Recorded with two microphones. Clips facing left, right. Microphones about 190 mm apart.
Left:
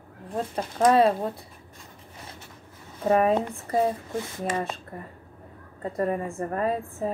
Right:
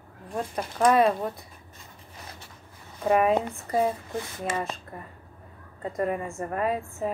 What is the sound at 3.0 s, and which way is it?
Speech, 35° left (ahead or behind).